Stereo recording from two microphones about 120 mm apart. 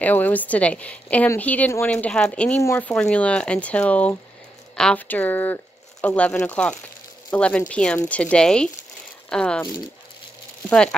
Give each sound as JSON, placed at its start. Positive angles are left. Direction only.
{"t": 0.0, "sound": "speech", "side_deg": 15}
{"t": 2.6, "sound": "speech", "side_deg": 20}
{"t": 2.9, "sound": "speech", "side_deg": 10}
{"t": 10.7, "sound": "speech", "side_deg": 10}